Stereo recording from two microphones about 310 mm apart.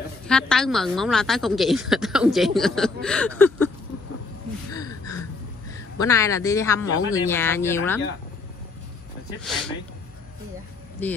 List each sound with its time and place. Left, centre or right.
0.3 s a woman's voice: centre
4.7 s gasp: centre
5.9 s speech: centre
6.8 s speech: left
7.2 s speech: centre
9.4 s a woman's voice: centre
11.0 s a woman's voice: centre